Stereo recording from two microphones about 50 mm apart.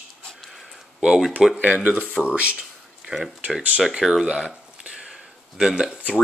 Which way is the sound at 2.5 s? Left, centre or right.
Centre.